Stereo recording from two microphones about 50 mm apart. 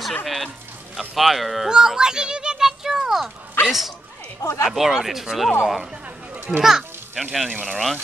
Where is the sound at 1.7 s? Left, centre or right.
Centre.